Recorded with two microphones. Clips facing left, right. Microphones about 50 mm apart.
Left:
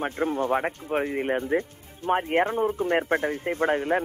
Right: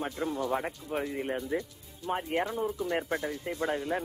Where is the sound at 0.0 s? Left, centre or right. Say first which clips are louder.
Left 6 dB; left.